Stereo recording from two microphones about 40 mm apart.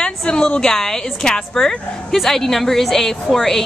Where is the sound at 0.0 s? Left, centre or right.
Left.